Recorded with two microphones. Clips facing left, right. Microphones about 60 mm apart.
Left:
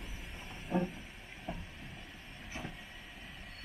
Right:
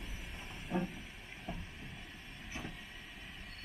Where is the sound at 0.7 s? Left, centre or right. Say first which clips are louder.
Left 3 dB; centre.